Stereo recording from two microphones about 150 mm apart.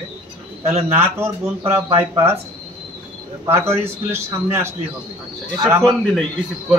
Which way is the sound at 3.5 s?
15° right (ahead or behind).